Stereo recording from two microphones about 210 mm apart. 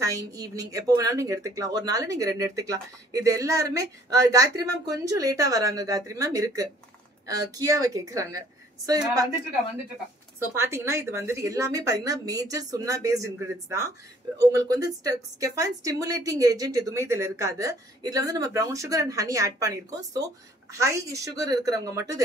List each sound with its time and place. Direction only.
0.0 s a woman's voice: 15° right (ahead or behind)
10.5 s a woman's voice: 10° right (ahead or behind)